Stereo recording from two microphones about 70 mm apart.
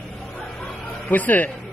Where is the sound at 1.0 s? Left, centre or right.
Left.